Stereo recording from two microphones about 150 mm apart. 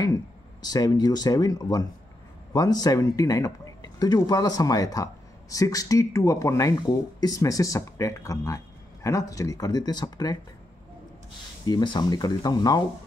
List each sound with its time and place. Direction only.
0.6 s speech: 25° left (ahead or behind)
11.6 s speech: 30° left (ahead or behind)